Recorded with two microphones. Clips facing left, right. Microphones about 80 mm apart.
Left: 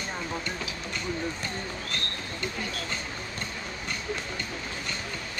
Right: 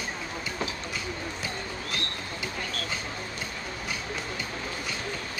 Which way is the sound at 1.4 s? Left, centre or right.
Centre.